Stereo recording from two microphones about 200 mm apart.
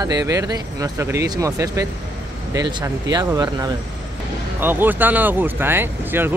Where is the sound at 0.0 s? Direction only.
20° right (ahead or behind).